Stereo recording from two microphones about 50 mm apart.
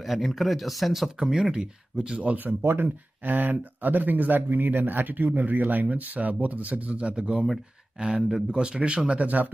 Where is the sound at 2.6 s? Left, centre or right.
Right.